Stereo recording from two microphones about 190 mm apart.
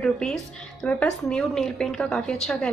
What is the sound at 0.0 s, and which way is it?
A woman's voice, 5° left (ahead or behind).